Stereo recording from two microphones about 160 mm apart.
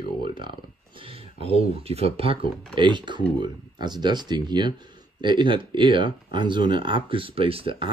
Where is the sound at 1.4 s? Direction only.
40° right (ahead or behind).